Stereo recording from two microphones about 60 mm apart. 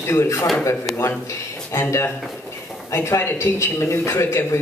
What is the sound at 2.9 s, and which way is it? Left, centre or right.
Speech, left.